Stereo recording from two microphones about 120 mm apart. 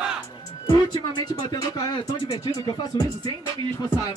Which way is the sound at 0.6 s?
35° left (ahead or behind).